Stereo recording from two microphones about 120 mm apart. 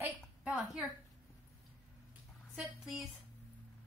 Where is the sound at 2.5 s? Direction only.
5° right (ahead or behind).